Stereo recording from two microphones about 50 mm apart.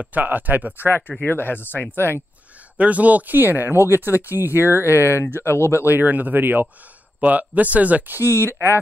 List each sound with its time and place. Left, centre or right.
0.0 s speech: right
0.7 s speech: left
2.8 s speech: right
4.8 s speech: left
5.9 s speech: right
8.2 s speech: left
8.5 s speech: left